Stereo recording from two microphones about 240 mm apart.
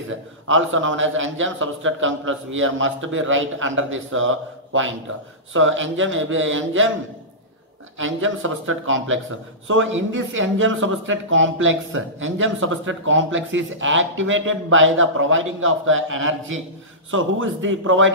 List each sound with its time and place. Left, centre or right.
0.5 s speech: right
8.0 s speech: right